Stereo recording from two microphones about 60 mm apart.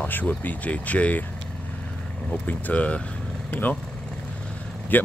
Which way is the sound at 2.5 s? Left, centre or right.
Left.